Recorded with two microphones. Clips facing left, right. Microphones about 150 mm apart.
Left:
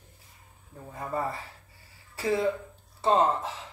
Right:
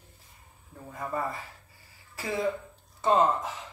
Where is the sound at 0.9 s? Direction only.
30° left (ahead or behind).